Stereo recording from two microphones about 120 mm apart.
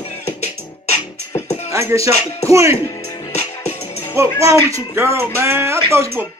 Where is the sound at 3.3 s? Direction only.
60° left (ahead or behind).